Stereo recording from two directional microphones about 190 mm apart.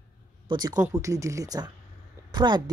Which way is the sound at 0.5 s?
20° right (ahead or behind).